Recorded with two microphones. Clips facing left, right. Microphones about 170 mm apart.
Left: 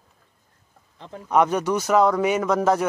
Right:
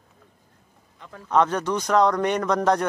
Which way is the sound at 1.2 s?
10° left (ahead or behind).